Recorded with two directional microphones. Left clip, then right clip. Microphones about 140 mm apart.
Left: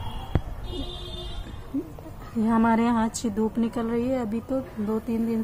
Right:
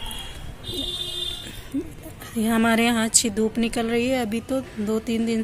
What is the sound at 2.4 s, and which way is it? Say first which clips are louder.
A woman's voice: right 2 dB; 5° left (ahead or behind).